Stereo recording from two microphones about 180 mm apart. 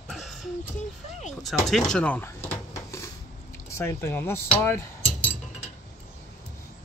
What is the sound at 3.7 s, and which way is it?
Speech, 15° left (ahead or behind).